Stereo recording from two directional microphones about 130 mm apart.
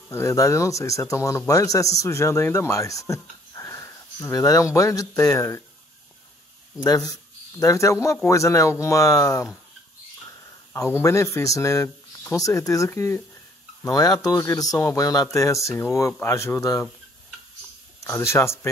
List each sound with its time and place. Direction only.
0.1 s a man's voice: 20° left (ahead or behind)
6.8 s a man's voice: 25° left (ahead or behind)
10.7 s a man's voice: 20° left (ahead or behind)
18.0 s a man's voice: 20° left (ahead or behind)